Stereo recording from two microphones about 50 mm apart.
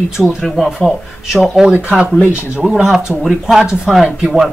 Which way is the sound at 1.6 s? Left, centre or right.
Right.